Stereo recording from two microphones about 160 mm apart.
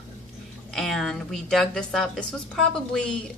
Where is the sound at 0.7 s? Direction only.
Centre (ahead or behind).